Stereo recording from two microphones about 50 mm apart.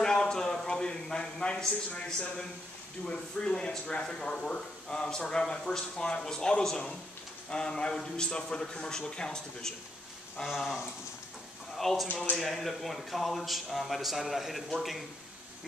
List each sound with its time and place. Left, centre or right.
0.0 s a sound: centre
2.0 s speech: centre
11.7 s speech: centre